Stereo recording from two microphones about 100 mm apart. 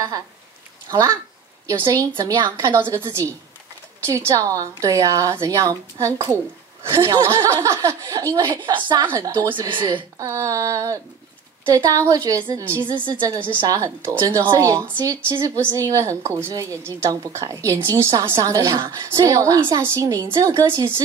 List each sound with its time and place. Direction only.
0.8 s a woman's voice: 40° right (ahead or behind)
2.6 s a woman's voice: 30° right (ahead or behind)
8.6 s a woman's voice: 50° right (ahead or behind)
9.1 s speech: 35° right (ahead or behind)
9.5 s a woman's voice: 55° right (ahead or behind)
10.1 s a woman's voice: 35° right (ahead or behind)
12.8 s a woman's voice: 45° right (ahead or behind)